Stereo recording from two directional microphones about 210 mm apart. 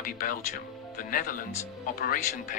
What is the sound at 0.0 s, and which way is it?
Speech, 40° left (ahead or behind).